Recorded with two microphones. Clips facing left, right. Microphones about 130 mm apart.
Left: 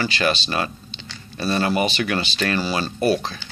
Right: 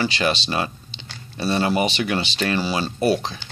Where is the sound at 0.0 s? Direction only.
20° right (ahead or behind).